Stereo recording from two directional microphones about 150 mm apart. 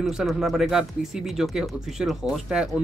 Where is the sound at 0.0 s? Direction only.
Centre (ahead or behind).